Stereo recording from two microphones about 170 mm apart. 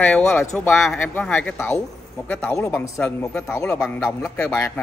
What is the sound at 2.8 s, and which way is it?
Speech, 15° left (ahead or behind).